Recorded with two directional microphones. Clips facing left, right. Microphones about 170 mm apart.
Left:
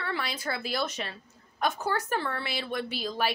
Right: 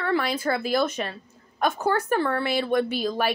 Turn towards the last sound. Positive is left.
turn(degrees=-55)  # may be behind; listen again after turning